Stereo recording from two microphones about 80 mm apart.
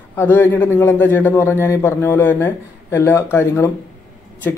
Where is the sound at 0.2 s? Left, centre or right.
Left.